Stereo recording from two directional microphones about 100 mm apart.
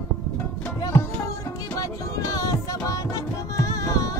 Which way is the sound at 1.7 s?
35° left (ahead or behind).